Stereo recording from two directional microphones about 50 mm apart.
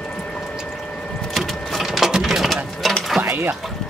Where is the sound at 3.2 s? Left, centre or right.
Right.